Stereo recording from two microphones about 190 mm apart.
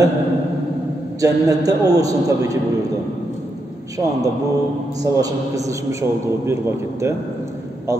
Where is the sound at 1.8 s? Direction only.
20° right (ahead or behind).